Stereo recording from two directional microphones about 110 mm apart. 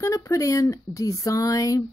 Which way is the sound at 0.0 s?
30° left (ahead or behind).